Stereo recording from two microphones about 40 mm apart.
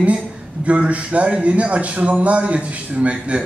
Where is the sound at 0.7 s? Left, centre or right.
Right.